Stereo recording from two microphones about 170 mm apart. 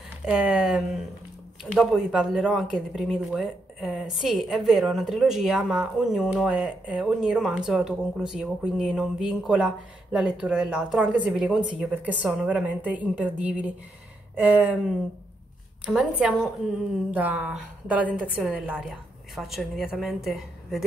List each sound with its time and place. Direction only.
0.2 s a woman's voice: 5° right (ahead or behind)
15.8 s a woman's voice: 5° right (ahead or behind)